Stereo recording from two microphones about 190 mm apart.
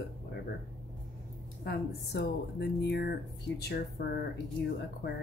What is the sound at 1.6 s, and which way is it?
Speech, 60° left (ahead or behind).